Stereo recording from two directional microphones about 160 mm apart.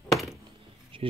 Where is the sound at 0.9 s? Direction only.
35° right (ahead or behind).